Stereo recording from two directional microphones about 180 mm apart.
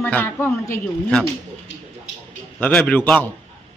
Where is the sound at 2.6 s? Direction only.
5° left (ahead or behind).